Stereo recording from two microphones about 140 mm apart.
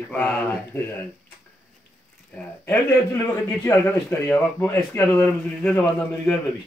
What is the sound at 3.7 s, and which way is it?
Speech, 15° left (ahead or behind).